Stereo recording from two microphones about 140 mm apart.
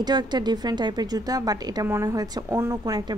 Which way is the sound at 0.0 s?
30° right (ahead or behind).